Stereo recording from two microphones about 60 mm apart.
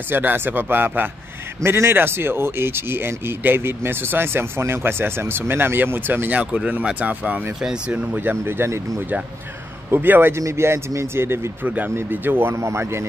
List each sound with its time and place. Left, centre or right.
0.1 s speech: right
7.6 s speech: centre
8.2 s speech: right
9.8 s speech: right
10.3 s speech: right
11.6 s speech: right
12.5 s speech: right